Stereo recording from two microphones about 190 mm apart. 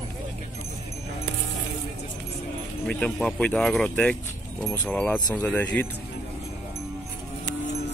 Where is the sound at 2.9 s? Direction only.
5° left (ahead or behind).